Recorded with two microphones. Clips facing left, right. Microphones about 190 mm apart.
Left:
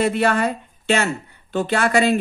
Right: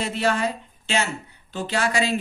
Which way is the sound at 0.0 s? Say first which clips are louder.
Left 5 dB; 55° left (ahead or behind).